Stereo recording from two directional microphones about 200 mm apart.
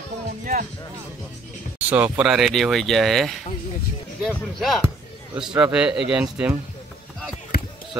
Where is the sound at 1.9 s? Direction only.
5° right (ahead or behind).